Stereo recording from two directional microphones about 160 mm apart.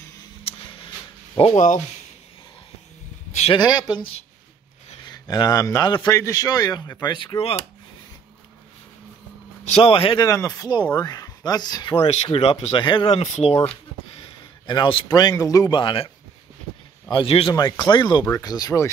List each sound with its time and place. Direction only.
0.4 s a sound: 35° left (ahead or behind)
1.3 s speech: 30° left (ahead or behind)
3.3 s a sound: 45° left (ahead or behind)
3.5 s speech: 25° left (ahead or behind)
9.7 s speech: 35° left (ahead or behind)
10.2 s speech: 20° left (ahead or behind)
12.0 s speech: 40° left (ahead or behind)
13.1 s speech: 40° left (ahead or behind)
17.1 s speech: 35° left (ahead or behind)